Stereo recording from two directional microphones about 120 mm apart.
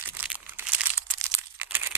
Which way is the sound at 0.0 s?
15° right (ahead or behind).